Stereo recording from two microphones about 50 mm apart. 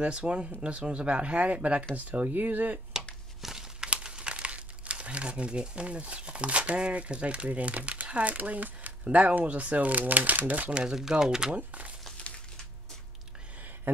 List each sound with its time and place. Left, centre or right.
0.0 s speech: right
3.3 s crumpling: centre
3.9 s speech: centre
10.7 s speech: centre
11.5 s speech: right